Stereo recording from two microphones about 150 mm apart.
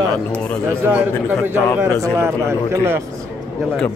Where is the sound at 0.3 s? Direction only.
5° left (ahead or behind).